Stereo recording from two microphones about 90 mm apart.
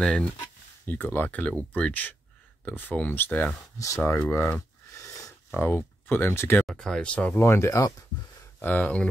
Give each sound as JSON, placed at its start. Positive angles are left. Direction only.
{"t": 0.8, "sound": "speech", "side_deg": 20}
{"t": 3.7, "sound": "speech", "side_deg": 35}
{"t": 4.3, "sound": "a sound", "side_deg": 30}
{"t": 5.5, "sound": "speech", "side_deg": 25}
{"t": 6.6, "sound": "speech", "side_deg": 5}
{"t": 7.3, "sound": "speech", "side_deg": 30}
{"t": 8.5, "sound": "speech", "side_deg": 20}